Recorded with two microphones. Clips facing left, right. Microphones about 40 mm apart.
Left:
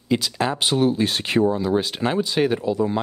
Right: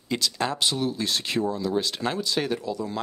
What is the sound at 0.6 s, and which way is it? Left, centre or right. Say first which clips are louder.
Speech: left 7 dB; left.